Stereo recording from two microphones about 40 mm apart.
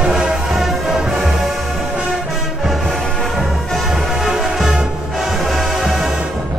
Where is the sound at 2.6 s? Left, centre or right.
Centre.